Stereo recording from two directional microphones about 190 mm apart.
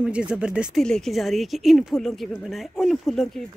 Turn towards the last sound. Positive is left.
turn(degrees=0)  # may be behind; listen again after turning